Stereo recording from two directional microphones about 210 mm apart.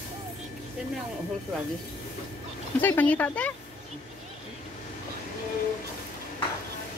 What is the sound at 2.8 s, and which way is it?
Speech, 10° left (ahead or behind).